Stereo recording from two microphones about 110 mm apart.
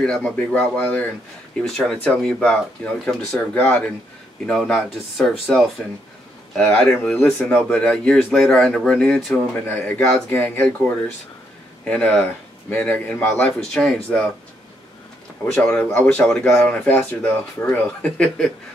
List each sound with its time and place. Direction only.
0.0 s speech: 5° left (ahead or behind)
3.5 s speech: 20° left (ahead or behind)
4.5 s speech: centre (ahead or behind)
6.5 s speech: 10° left (ahead or behind)
11.8 s speech: 10° left (ahead or behind)
15.5 s speech: 10° left (ahead or behind)